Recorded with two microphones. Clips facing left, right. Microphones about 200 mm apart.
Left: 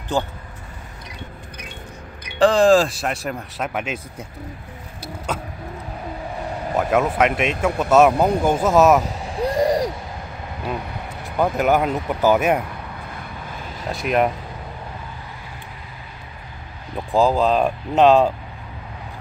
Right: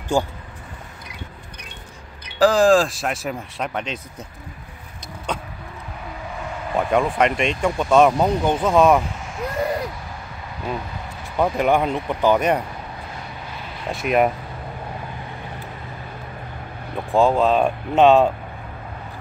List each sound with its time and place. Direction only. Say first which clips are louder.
0.1 s speech: right 2 dB; 10° right (ahead or behind)
2.3 s speech: left 1 dB; centre (ahead or behind)
5.0 s vehicle: left 1 dB; 5° left (ahead or behind)
6.7 s speech: even; 5° left (ahead or behind)
9.0 s vehicle: left 5 dB; 35° left (ahead or behind)
11.3 s speech: even; centre (ahead or behind)
13.8 s speech: right 1 dB; centre (ahead or behind)
17.1 s speech: even; centre (ahead or behind)